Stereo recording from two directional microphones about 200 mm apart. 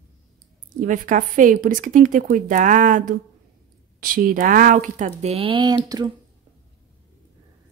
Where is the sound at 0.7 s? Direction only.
40° right (ahead or behind).